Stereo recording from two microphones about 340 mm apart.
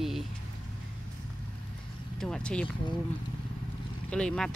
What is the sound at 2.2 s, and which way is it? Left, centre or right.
Speech, centre.